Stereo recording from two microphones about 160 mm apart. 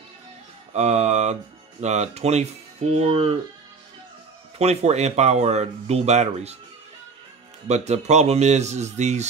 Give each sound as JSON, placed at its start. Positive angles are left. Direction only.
{"t": 0.7, "sound": "speech", "side_deg": -45}
{"t": 4.6, "sound": "speech", "side_deg": -40}
{"t": 7.6, "sound": "speech", "side_deg": -45}